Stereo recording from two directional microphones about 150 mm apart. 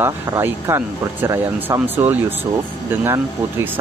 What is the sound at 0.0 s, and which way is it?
Speech, 15° right (ahead or behind).